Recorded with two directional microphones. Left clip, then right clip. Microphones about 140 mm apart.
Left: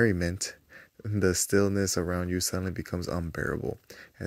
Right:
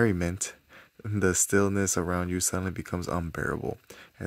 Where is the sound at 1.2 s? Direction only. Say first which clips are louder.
Even; 25° right (ahead or behind).